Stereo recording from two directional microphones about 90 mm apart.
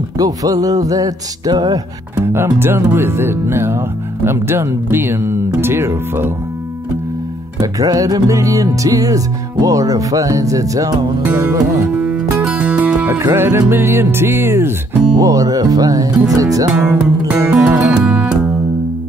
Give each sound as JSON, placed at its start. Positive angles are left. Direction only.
{"t": 0.2, "sound": "music", "side_deg": -40}
{"t": 2.1, "sound": "speech", "side_deg": -25}
{"t": 7.6, "sound": "music", "side_deg": -40}
{"t": 12.0, "sound": "music", "side_deg": -15}
{"t": 13.2, "sound": "speech", "side_deg": -30}
{"t": 15.1, "sound": "music", "side_deg": -40}
{"t": 16.8, "sound": "music", "side_deg": -15}